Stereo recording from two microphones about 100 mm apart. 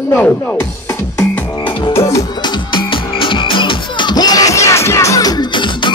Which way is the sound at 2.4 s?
55° left (ahead or behind).